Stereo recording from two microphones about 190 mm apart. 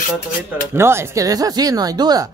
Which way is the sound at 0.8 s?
15° right (ahead or behind).